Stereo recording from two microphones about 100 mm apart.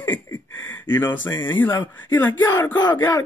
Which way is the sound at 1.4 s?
20° left (ahead or behind).